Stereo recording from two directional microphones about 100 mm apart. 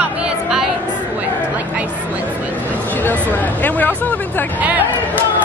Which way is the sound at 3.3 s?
20° left (ahead or behind).